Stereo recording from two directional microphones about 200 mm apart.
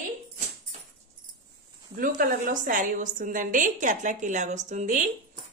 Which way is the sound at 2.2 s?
45° right (ahead or behind).